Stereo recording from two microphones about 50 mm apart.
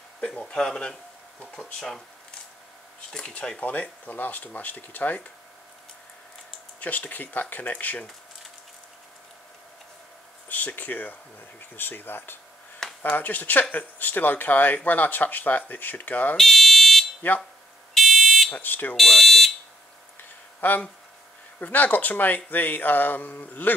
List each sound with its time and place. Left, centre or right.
0.3 s a man's voice: centre
3.1 s a man's voice: centre
3.6 s speech: left
6.8 s speech: left
10.5 s speech: left
16.3 s fire alarm: centre
17.2 s speech: left
17.9 s fire alarm: centre
18.5 s speech: left
18.9 s speech: centre
20.6 s speech: left